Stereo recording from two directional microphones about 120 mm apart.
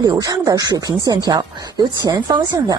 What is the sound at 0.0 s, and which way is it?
Speech, 30° right (ahead or behind).